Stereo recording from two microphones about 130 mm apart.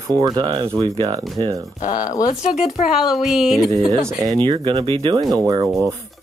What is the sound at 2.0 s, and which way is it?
Speech, 25° left (ahead or behind).